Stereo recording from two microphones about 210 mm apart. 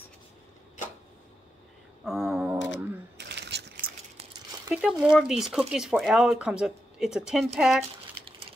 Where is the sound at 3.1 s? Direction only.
55° right (ahead or behind).